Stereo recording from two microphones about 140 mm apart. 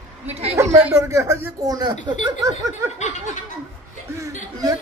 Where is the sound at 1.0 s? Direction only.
20° right (ahead or behind).